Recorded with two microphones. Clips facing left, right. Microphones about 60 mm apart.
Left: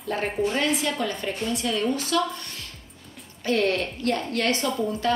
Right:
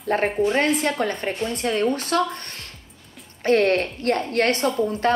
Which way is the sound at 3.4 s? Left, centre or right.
Right.